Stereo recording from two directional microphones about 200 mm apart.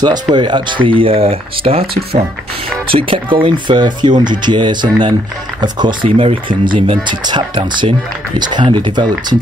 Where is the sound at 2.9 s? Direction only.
25° right (ahead or behind).